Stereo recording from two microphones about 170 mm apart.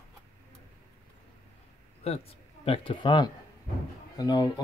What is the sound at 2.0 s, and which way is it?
Speech, 35° left (ahead or behind).